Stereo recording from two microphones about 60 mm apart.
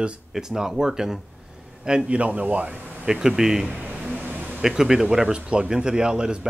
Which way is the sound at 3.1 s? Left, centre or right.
Centre.